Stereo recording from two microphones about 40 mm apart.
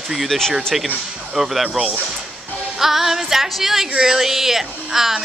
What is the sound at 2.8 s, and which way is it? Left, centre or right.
A woman's voice, centre.